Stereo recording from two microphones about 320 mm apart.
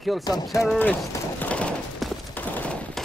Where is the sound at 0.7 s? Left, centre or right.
Centre.